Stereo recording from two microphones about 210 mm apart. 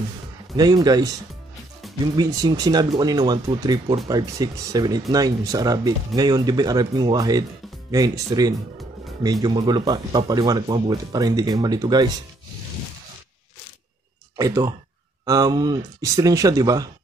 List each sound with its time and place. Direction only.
0.6 s speech: 20° right (ahead or behind)
2.1 s speech: 20° right (ahead or behind)
14.3 s speech: 15° right (ahead or behind)